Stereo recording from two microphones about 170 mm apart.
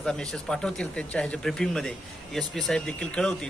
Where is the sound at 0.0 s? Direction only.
5° left (ahead or behind).